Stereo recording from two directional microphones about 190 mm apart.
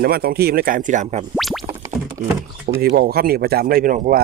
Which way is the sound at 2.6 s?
50° right (ahead or behind).